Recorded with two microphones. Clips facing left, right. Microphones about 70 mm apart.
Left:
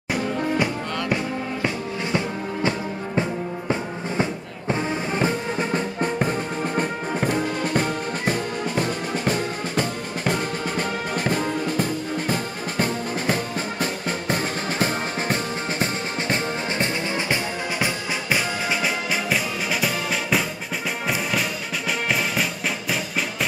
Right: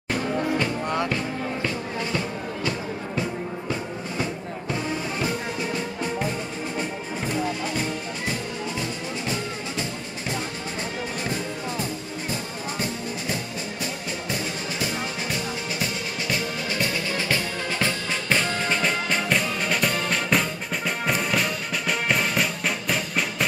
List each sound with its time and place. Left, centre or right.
1.0 s music: centre
4.2 s music: left
15.8 s music: left; by 23.2 s centre